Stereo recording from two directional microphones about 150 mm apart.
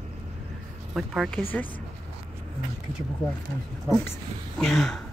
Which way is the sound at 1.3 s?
10° left (ahead or behind).